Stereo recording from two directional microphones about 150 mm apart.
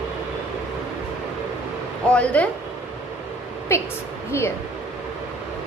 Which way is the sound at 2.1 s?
10° left (ahead or behind).